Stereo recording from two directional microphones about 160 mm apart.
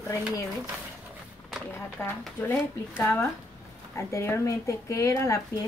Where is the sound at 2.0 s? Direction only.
15° left (ahead or behind).